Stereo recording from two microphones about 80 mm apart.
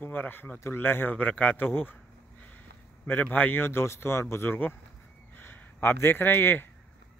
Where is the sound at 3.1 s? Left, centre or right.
Left.